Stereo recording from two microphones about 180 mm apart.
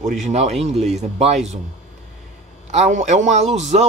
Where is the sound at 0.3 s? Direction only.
35° right (ahead or behind).